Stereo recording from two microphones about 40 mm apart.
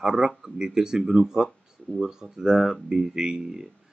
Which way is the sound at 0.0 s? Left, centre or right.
Centre.